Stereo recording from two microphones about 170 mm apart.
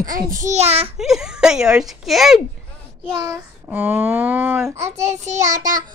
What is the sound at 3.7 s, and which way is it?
A child's voice, 10° right (ahead or behind).